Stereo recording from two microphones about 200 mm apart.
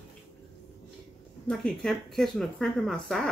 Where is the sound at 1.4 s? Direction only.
Centre (ahead or behind).